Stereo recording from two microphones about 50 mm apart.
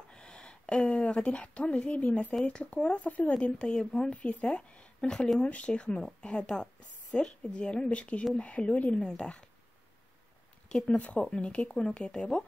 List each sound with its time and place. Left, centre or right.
0.1 s a sound: centre
1.1 s speech: left
3.1 s speech: left
3.3 s speech: centre
4.1 s speech: left
10.7 s speech: centre
11.0 s speech: left